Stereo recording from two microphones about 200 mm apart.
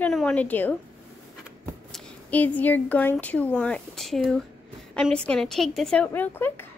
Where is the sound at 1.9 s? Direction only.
5° left (ahead or behind).